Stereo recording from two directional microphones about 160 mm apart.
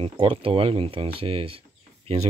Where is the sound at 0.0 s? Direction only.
35° right (ahead or behind).